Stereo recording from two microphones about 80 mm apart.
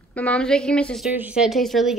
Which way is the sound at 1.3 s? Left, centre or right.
Centre.